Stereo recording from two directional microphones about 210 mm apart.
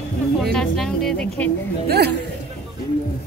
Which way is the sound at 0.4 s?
Centre (ahead or behind).